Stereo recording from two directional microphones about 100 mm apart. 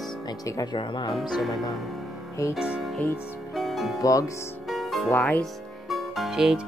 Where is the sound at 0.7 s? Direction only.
55° left (ahead or behind).